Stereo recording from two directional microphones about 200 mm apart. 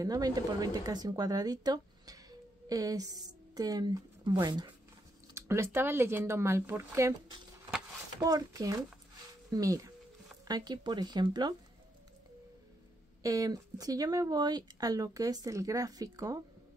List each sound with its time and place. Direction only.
0.0 s a woman's voice: 20° right (ahead or behind)
13.2 s speech: 15° right (ahead or behind)